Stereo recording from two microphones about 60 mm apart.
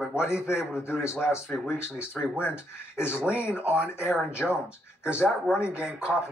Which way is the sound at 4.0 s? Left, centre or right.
Left.